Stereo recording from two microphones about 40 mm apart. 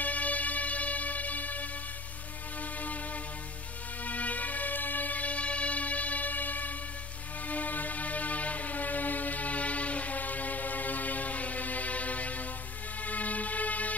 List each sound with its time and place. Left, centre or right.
0.0 s music: left
4.0 s music: left